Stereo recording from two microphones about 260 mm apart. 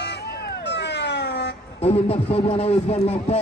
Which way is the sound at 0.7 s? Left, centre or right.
Left.